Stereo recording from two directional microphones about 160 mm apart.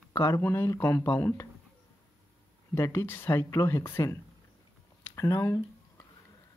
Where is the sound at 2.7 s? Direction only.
20° left (ahead or behind).